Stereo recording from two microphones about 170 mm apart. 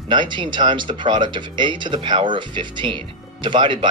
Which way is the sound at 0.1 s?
30° right (ahead or behind).